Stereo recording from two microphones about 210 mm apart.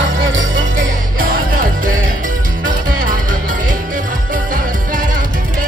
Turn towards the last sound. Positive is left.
turn(degrees=-40)  # may be behind; listen again after turning